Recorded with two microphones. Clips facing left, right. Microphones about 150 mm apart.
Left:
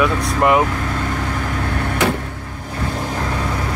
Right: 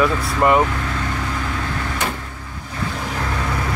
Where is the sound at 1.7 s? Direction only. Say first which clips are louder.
Left 9 dB; 55° left (ahead or behind).